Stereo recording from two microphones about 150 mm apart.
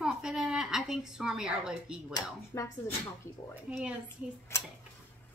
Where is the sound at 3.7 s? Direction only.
10° right (ahead or behind).